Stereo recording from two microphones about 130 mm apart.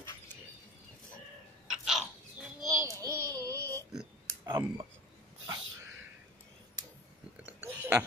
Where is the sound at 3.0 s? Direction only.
25° right (ahead or behind).